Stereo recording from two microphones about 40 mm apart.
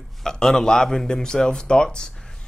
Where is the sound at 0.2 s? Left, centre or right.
Centre.